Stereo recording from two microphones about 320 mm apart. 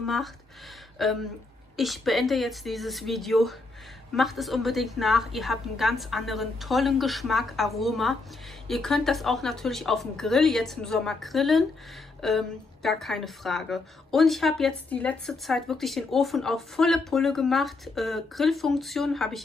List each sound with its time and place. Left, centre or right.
0.0 s a woman's voice: centre